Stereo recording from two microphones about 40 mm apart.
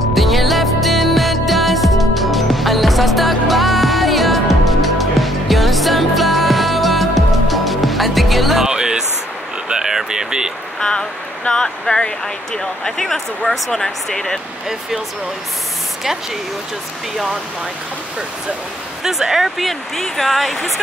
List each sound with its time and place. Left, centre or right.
0.1 s music: centre
8.6 s a sound: centre
10.8 s a sound: centre
11.4 s speech: left
19.0 s speech: centre
19.6 s speech: centre